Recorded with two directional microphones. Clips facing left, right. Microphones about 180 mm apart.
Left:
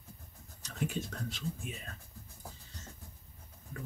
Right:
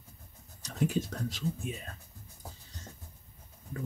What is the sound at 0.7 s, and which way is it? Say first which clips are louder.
Speech: right 6 dB; 40° right (ahead or behind).